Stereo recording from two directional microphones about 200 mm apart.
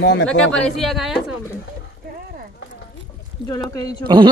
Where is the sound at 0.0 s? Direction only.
65° left (ahead or behind).